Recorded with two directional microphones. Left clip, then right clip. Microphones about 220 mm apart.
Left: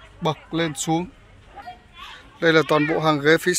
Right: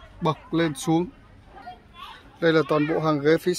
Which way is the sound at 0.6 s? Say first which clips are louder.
Right 1 dB; centre (ahead or behind).